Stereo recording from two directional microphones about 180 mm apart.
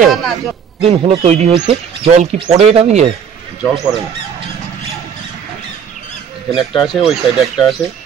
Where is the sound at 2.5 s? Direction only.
35° right (ahead or behind).